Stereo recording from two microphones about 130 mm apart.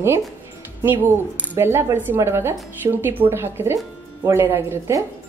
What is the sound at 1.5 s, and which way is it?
Speech, 20° right (ahead or behind).